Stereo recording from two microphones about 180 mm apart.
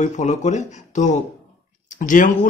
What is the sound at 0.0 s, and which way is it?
Speech, 40° left (ahead or behind).